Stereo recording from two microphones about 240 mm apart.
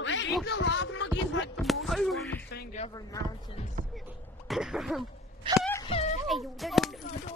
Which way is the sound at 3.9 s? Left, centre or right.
Centre.